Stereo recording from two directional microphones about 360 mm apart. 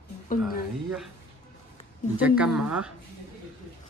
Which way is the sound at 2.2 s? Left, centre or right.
Centre.